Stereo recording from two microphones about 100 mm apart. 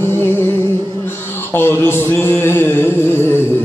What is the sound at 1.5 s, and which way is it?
Music, 25° left (ahead or behind).